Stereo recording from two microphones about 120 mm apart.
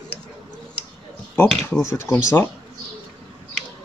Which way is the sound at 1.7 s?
25° left (ahead or behind).